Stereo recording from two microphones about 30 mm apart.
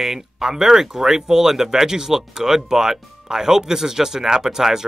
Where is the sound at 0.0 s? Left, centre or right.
Centre.